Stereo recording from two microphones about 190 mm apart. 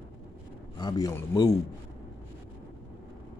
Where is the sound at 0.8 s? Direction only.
20° left (ahead or behind).